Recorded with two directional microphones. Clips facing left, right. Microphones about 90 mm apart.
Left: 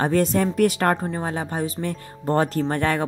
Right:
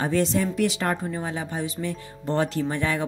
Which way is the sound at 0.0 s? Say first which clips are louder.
Left 3 dB; 50° left (ahead or behind).